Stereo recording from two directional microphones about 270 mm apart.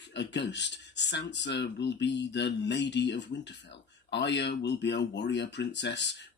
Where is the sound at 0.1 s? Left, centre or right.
Left.